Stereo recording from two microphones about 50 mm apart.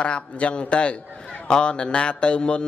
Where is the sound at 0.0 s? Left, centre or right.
Left.